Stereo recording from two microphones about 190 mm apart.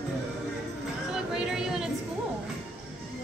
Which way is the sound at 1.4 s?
5° right (ahead or behind).